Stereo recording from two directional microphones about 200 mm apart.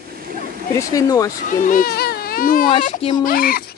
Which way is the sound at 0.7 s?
15° left (ahead or behind).